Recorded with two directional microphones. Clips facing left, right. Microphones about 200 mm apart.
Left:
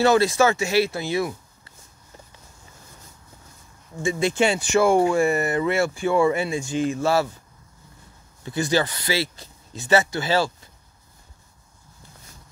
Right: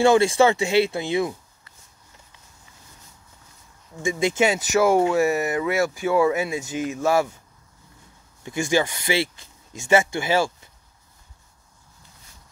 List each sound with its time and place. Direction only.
0.0 s speech: 15° right (ahead or behind)
4.0 s speech: 15° right (ahead or behind)
8.5 s speech: 15° right (ahead or behind)